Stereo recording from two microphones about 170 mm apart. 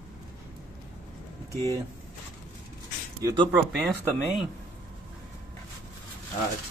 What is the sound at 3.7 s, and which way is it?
Speech, centre (ahead or behind).